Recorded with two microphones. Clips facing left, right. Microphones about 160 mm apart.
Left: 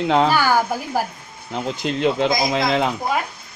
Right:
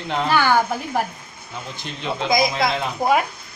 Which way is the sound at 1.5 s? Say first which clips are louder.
Left 10 dB; 90° left.